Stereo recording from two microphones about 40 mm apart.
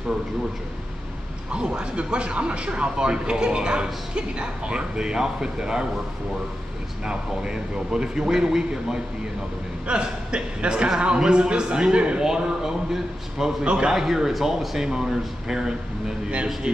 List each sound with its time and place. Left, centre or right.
1.5 s speech: right
7.1 s speech: centre
9.8 s speech: right
13.9 s speech: centre